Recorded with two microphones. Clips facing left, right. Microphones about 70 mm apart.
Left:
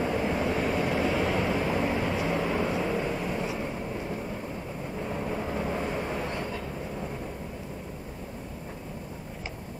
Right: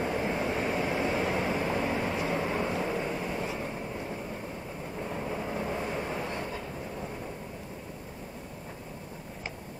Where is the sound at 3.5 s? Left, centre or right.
Left.